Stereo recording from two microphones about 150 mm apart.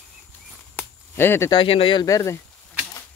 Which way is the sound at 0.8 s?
15° left (ahead or behind).